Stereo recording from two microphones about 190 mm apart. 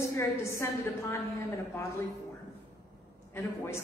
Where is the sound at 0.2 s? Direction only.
15° left (ahead or behind).